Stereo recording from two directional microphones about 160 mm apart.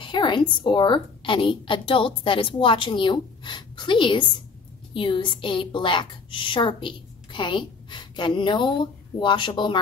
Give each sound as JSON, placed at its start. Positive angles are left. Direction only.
{"t": 0.0, "sound": "a woman's voice", "side_deg": 30}